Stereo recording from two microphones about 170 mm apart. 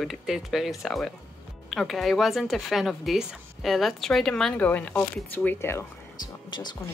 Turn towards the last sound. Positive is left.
turn(degrees=25)  # may be behind; listen again after turning